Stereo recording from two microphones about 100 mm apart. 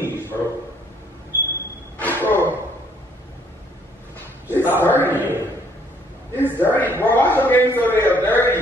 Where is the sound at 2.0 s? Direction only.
20° left (ahead or behind).